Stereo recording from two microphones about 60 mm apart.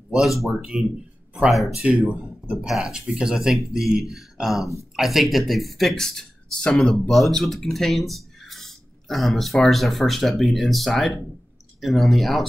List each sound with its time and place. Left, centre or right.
0.1 s speech: centre
2.1 s a man's voice: centre
2.5 s speech: centre